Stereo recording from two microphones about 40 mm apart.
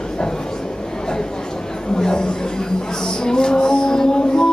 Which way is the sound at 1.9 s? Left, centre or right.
Centre.